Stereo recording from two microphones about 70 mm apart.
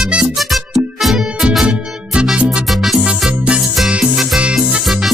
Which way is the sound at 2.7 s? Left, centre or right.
Centre.